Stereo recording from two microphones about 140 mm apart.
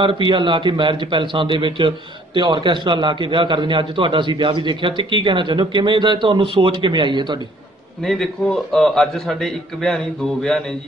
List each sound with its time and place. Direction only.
0.0 s a man's voice: 35° right (ahead or behind)
8.0 s a man's voice: 5° left (ahead or behind)